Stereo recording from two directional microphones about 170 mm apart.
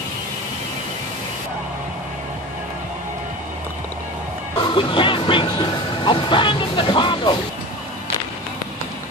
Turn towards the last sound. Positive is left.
turn(degrees=30)  # may be behind; listen again after turning